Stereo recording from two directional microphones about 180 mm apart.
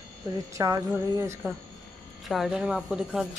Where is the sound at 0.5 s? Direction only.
15° right (ahead or behind).